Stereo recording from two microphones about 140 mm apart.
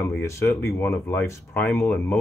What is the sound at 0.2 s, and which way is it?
Speech, 20° left (ahead or behind).